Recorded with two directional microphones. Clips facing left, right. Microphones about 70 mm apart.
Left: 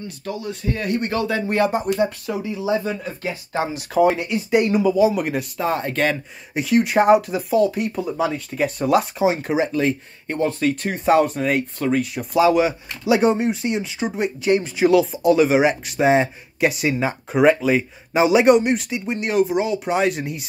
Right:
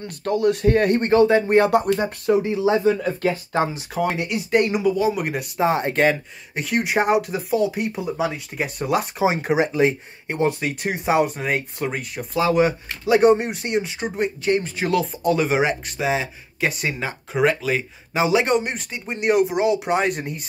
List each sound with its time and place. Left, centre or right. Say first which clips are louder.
0.0 s speech: right 9 dB; right
1.1 s speech: right 8 dB; right
4.1 s speech: left 2 dB; centre
5.6 s speech: right 4 dB; right
6.5 s speech: left 4 dB; centre
9.2 s speech: even; centre
14.2 s speech: left 1 dB; centre
16.0 s speech: left 7 dB; left
16.5 s speech: left 4 dB; centre